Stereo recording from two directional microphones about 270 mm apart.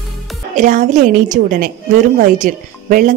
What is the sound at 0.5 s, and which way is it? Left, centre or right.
A woman's voice, right.